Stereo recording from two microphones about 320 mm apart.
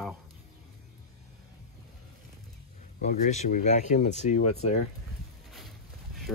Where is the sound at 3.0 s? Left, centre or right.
Left.